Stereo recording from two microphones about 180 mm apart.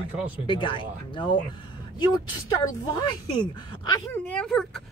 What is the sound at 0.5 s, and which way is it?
Speech, 25° left (ahead or behind).